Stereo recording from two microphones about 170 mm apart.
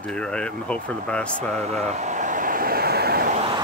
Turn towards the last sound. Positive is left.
turn(degrees=-65)  # may be behind; listen again after turning